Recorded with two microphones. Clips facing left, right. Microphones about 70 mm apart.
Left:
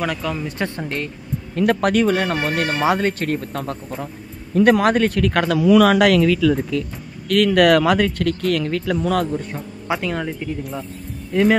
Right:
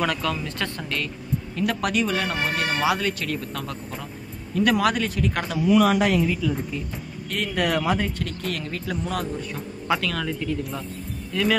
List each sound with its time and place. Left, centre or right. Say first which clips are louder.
0.0 s speech: left 1 dB; centre
0.4 s speech: left 5 dB; left
1.5 s speech: left 8 dB; left
2.7 s speech: left 5 dB; left
9.8 s speech: left 2 dB; left
10.6 s speech: left 2 dB; centre
11.3 s speech: left 8 dB; left